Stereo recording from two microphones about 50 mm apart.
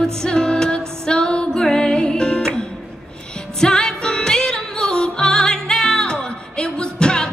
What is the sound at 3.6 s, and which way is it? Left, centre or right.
Music, centre.